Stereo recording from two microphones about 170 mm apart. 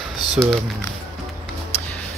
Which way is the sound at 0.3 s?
Centre (ahead or behind).